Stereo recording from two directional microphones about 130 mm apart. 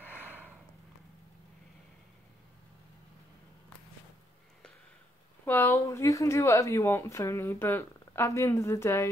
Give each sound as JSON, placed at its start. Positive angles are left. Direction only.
{"t": 0.1, "sound": "snort", "side_deg": -15}
{"t": 5.4, "sound": "speech", "side_deg": 20}